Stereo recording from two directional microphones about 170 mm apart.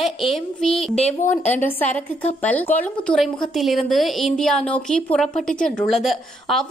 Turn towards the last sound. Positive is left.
turn(degrees=0)  # may be behind; listen again after turning